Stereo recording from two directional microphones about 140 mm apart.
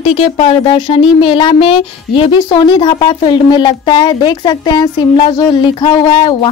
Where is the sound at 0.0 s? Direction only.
45° left (ahead or behind).